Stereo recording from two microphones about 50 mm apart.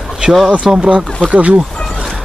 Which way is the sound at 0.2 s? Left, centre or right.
Centre.